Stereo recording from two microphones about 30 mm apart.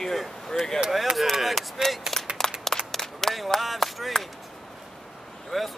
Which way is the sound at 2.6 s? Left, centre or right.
Centre.